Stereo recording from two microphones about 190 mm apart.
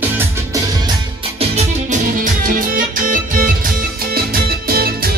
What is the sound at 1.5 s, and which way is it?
Music, 40° right (ahead or behind).